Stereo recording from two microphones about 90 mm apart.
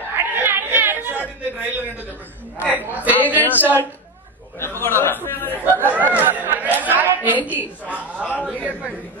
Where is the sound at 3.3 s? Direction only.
20° left (ahead or behind).